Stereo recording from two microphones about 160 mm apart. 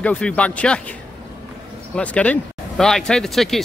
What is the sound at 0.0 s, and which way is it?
Speech, 10° left (ahead or behind).